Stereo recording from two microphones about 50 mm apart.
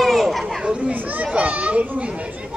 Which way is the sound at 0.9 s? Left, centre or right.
Right.